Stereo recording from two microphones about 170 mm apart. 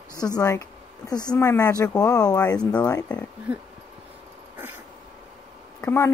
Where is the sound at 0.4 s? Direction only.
20° left (ahead or behind).